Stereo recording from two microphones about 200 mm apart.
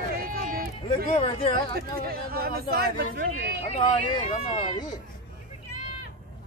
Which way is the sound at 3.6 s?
35° left (ahead or behind).